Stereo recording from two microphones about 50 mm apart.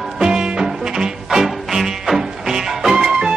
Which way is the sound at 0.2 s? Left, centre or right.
Centre.